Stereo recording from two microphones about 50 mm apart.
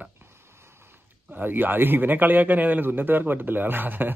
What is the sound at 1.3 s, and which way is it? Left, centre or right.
A man's voice, right.